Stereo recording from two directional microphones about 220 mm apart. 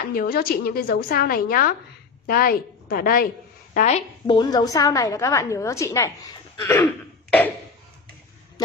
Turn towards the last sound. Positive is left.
turn(degrees=10)  # may be behind; listen again after turning